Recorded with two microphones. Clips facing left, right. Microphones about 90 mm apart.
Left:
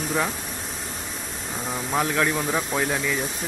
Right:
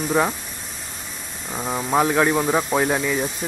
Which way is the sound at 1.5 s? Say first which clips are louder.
Right 5 dB; 25° right (ahead or behind).